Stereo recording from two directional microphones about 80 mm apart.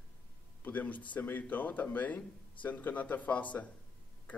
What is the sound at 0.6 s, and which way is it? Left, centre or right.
Speech, left.